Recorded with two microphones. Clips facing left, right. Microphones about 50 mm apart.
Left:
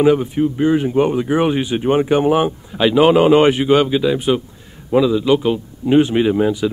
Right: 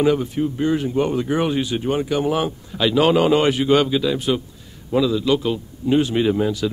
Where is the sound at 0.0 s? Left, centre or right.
Centre.